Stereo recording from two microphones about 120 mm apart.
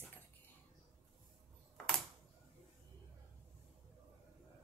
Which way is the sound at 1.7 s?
5° left (ahead or behind).